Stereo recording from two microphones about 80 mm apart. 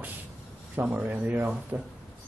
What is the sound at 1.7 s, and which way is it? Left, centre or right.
Speech, right.